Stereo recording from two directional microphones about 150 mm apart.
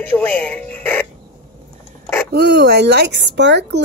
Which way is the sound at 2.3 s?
90° right.